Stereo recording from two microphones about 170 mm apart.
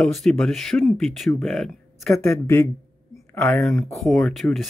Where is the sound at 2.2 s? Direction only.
15° left (ahead or behind).